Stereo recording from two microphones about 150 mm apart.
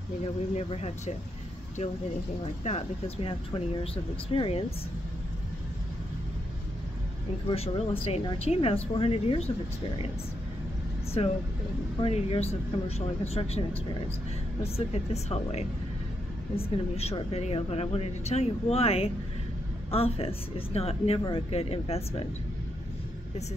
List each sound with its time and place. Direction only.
0.6 s a woman's voice: 45° left (ahead or behind)
2.4 s speech: 45° left (ahead or behind)
7.4 s speech: 40° left (ahead or behind)
11.2 s a woman's voice: 40° left (ahead or behind)
14.6 s a woman's voice: 45° left (ahead or behind)